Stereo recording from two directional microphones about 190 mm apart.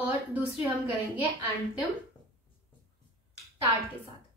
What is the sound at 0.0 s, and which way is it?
Speech, 10° right (ahead or behind).